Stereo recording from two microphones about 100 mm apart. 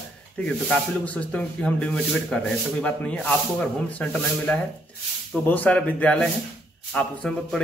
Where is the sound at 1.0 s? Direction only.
15° left (ahead or behind).